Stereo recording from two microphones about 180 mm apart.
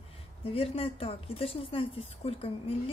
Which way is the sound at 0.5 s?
30° left (ahead or behind).